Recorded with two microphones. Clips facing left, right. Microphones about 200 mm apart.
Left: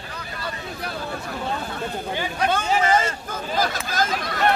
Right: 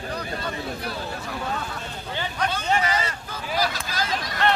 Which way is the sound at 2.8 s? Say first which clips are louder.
Left 6 dB; 50° left (ahead or behind).